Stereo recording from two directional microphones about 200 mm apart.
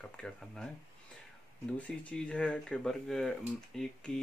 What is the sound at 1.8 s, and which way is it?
Speech, 5° left (ahead or behind).